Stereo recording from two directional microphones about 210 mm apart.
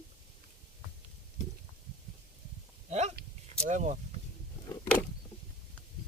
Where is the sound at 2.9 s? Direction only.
30° right (ahead or behind).